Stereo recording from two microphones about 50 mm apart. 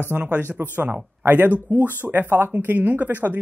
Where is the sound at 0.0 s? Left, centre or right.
Right.